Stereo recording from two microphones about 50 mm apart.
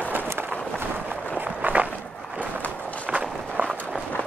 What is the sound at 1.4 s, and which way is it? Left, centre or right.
Walk, right.